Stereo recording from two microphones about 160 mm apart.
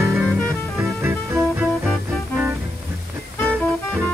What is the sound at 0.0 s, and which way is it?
Music, 15° right (ahead or behind).